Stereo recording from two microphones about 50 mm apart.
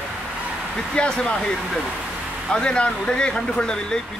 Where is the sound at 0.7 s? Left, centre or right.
Centre.